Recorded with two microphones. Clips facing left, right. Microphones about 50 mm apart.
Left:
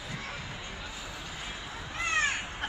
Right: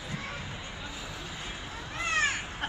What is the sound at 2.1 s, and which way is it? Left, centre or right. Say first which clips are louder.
Crow: right 1 dB; left.